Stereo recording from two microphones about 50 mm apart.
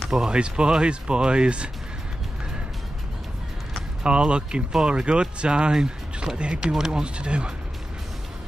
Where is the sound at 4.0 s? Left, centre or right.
Centre.